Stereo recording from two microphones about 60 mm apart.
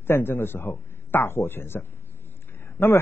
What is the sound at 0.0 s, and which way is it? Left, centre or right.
A man's voice, left.